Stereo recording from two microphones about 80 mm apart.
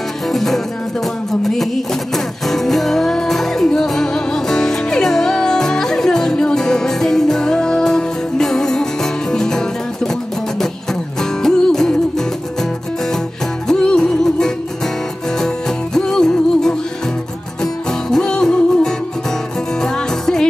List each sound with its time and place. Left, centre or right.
0.3 s music: centre
11.1 s music: centre
13.7 s music: centre
18.1 s music: centre